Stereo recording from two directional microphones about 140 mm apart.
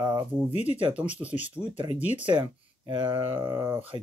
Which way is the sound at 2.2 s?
35° right (ahead or behind).